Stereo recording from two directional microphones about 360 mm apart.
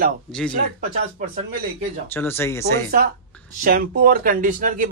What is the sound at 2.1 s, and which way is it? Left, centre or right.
Speech, centre.